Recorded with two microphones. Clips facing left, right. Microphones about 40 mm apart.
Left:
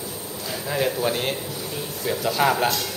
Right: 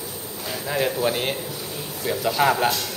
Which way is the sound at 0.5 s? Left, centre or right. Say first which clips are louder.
Even; centre.